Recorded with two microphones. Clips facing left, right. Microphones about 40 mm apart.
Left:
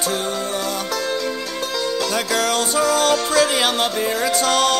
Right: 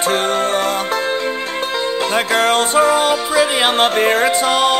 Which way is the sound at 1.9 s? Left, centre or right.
Right.